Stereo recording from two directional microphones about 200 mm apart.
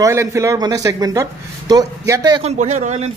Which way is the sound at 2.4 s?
35° right (ahead or behind).